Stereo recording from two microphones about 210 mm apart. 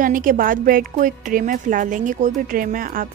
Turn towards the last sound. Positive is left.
turn(degrees=-40)  # may be behind; listen again after turning